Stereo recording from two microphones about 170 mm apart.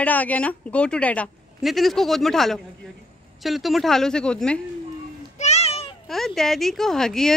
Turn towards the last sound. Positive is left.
turn(degrees=5)  # may be behind; listen again after turning